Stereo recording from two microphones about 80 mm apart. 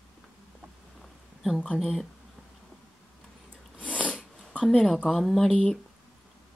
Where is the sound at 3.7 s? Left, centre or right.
Centre.